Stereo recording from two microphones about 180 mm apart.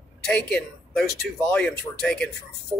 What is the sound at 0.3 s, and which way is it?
Speech, 5° left (ahead or behind).